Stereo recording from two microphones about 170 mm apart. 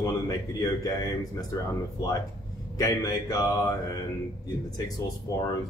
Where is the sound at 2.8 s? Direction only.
20° left (ahead or behind).